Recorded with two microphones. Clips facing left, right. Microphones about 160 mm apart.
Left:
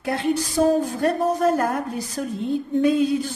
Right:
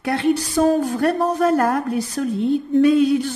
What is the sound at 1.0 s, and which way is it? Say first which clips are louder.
Speech: right 1 dB; 75° right (ahead or behind).